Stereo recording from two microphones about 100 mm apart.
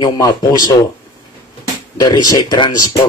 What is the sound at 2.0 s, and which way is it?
Speech, 40° left (ahead or behind).